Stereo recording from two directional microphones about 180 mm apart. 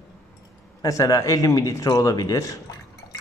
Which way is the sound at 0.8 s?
20° left (ahead or behind).